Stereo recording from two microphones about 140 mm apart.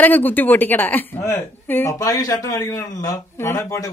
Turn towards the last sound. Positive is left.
turn(degrees=25)  # may be behind; listen again after turning